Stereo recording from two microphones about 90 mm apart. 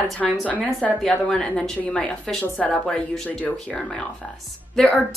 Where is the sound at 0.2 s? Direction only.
5° left (ahead or behind).